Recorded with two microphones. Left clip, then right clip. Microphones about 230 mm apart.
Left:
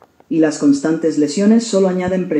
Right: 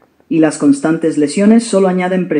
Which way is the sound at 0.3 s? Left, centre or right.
Right.